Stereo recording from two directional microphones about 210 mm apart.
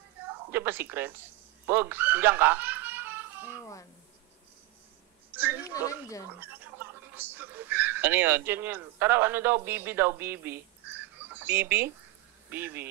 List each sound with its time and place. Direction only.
0.5 s speech: 10° right (ahead or behind)
5.3 s a sound: 10° right (ahead or behind)
5.7 s speech: 15° left (ahead or behind)
6.4 s speech: 10° right (ahead or behind)